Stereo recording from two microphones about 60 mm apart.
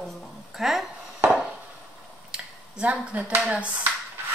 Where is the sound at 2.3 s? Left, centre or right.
Centre.